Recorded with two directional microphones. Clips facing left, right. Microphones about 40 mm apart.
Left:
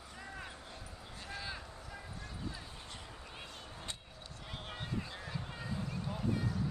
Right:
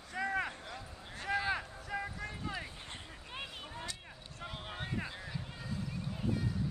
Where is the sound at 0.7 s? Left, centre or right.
Right.